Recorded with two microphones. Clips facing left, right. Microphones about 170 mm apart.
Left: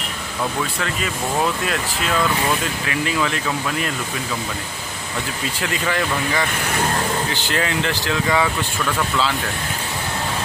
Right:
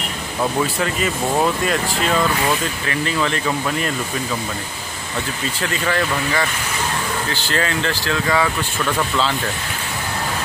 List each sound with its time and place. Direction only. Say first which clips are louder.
1.4 s speech: right 2 dB; 5° right (ahead or behind)
2.9 s speech: right 1 dB; 5° left (ahead or behind)
5.6 s speech: right 2 dB; 10° left (ahead or behind)
7.5 s speech: right 1 dB; 15° left (ahead or behind)